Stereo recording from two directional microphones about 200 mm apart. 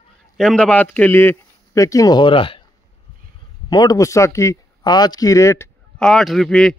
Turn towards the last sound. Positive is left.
turn(degrees=0)  # may be behind; listen again after turning